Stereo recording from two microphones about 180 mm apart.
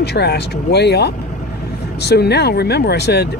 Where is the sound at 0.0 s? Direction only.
65° left (ahead or behind).